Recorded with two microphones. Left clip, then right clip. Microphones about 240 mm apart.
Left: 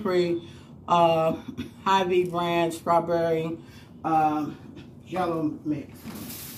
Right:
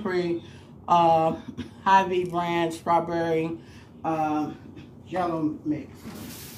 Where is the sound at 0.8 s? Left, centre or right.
Centre.